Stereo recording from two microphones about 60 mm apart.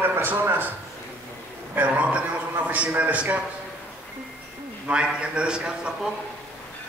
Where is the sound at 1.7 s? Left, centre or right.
Right.